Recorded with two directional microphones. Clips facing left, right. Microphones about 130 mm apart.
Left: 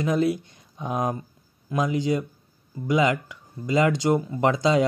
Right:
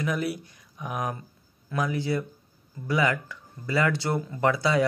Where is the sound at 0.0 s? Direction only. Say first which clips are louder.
Left 6 dB; 25° left (ahead or behind).